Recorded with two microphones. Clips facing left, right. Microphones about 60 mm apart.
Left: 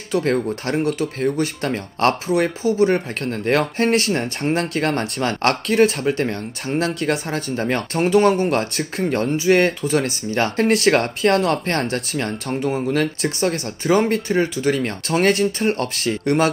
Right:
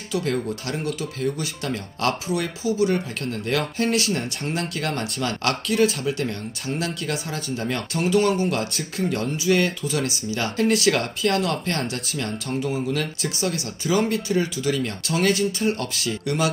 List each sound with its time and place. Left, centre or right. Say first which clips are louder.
0.1 s speech: left 5 dB; left